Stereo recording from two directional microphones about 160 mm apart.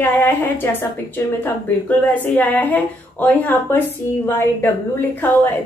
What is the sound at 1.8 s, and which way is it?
Speech, 10° left (ahead or behind).